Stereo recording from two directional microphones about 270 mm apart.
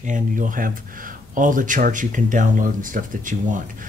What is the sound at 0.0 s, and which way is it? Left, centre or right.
Speech, right.